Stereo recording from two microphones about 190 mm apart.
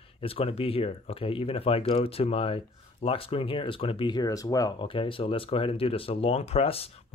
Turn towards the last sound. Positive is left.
turn(degrees=30)  # may be behind; listen again after turning